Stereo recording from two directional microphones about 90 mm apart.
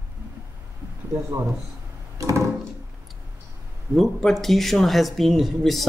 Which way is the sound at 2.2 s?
35° right (ahead or behind).